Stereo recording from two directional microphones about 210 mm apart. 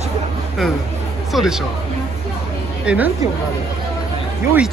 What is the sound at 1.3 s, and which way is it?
Speech, centre (ahead or behind).